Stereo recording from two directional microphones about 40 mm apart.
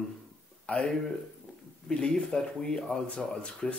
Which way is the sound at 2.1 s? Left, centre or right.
Centre.